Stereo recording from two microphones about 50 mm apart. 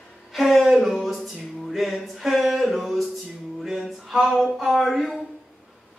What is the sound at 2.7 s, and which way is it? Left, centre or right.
Music, centre.